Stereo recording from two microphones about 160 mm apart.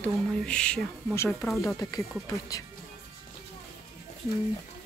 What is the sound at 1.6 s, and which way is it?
Speech, 20° left (ahead or behind).